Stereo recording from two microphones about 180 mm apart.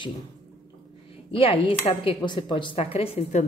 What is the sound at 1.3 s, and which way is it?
Speech, 30° left (ahead or behind).